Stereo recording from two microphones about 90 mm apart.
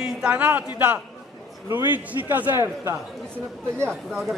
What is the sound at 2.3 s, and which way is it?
Speech, 20° right (ahead or behind).